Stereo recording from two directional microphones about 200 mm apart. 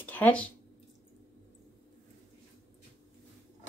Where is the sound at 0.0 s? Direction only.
10° left (ahead or behind).